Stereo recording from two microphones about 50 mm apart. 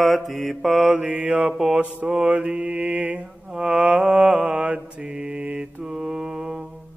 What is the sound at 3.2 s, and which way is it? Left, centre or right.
Mantra, centre.